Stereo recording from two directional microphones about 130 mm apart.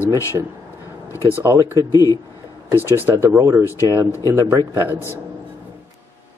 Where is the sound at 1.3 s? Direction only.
20° right (ahead or behind).